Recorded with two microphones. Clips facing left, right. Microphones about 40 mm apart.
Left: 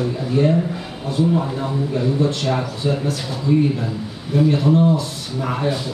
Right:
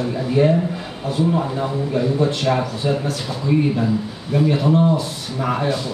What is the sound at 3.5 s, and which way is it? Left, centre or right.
Speech, centre.